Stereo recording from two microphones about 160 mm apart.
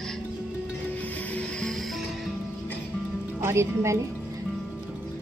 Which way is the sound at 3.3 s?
15° right (ahead or behind).